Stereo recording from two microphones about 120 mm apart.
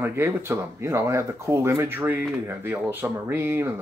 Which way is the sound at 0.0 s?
20° right (ahead or behind).